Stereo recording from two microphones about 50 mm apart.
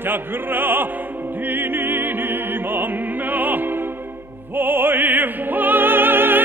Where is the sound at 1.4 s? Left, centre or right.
Right.